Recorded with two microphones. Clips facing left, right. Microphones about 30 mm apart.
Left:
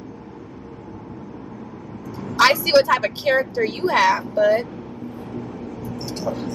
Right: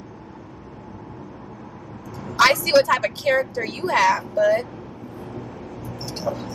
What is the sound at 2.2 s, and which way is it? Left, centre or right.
Vehicle, centre.